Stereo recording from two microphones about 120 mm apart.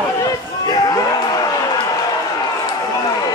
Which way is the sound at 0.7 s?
30° left (ahead or behind).